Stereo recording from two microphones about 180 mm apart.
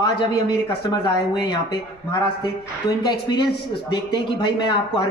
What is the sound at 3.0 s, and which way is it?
Speech, 25° left (ahead or behind).